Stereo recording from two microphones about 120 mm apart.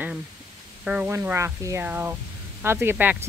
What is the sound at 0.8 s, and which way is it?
Speech, 10° right (ahead or behind).